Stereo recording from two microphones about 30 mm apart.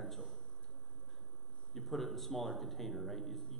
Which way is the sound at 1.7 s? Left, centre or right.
Centre.